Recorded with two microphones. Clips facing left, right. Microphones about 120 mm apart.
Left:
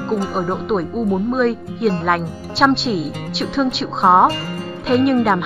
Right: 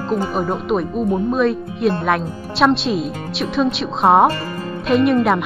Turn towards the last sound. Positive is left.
turn(degrees=0)  # may be behind; listen again after turning